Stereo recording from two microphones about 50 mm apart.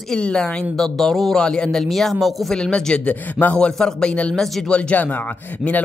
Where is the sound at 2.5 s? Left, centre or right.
Centre.